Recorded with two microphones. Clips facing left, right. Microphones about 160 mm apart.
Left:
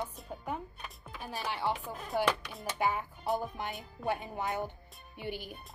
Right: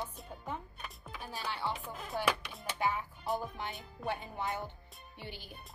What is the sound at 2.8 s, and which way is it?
A woman's voice, 10° left (ahead or behind).